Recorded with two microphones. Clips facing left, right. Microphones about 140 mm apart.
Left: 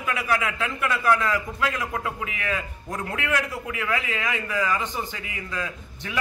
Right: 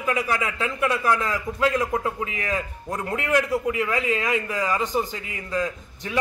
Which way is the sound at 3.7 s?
35° right (ahead or behind).